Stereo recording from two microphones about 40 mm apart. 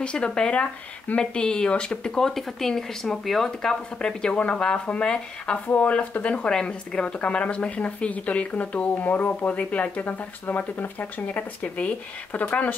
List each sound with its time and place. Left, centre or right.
0.0 s speech: left
5.8 s speech: left
6.5 s speech: centre
7.2 s speech: left
11.0 s speech: left